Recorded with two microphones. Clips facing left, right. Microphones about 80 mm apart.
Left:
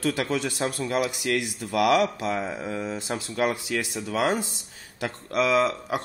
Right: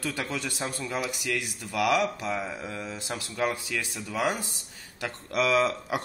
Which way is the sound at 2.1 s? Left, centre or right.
Centre.